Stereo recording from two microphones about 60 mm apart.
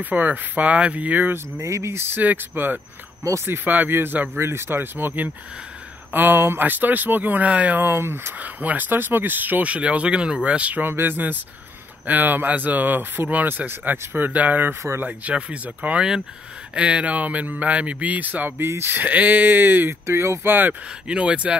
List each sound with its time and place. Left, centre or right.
0.0 s speech: right
1.6 s speech: right
2.1 s speech: right
7.8 s speech: right
8.4 s speech: right
10.9 s speech: right
18.6 s speech: right
18.9 s speech: right
19.9 s speech: right
21.1 s speech: right